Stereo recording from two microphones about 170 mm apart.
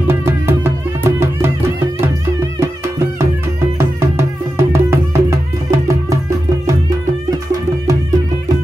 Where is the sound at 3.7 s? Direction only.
15° right (ahead or behind).